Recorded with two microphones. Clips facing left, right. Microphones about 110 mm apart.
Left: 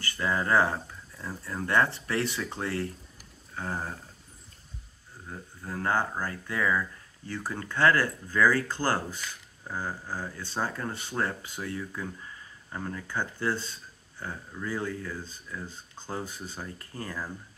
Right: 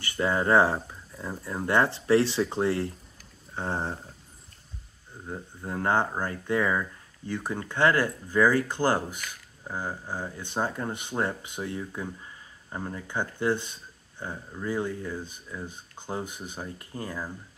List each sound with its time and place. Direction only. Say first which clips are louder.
0.0 s speech: right 3 dB; 20° right (ahead or behind)
5.3 s speech: right 4 dB; 25° right (ahead or behind)